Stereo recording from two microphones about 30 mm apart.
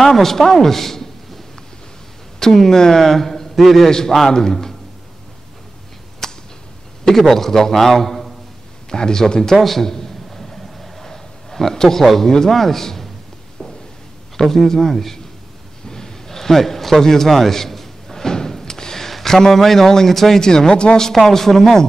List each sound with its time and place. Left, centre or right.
0.0 s a man's voice: centre
2.4 s a man's voice: centre
6.2 s a sound: centre
7.1 s a man's voice: centre
8.9 s speech: left
9.6 s a sound: centre
12.0 s speech: centre
13.6 s a sound: centre
14.3 s a man's voice: centre
15.9 s a sound: centre
19.0 s a man's voice: centre
20.4 s speech: left
21.3 s a man's voice: centre